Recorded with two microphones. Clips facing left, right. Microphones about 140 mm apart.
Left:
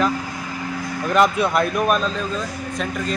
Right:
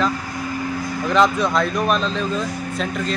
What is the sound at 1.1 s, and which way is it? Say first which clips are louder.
Speech: even; 10° left (ahead or behind).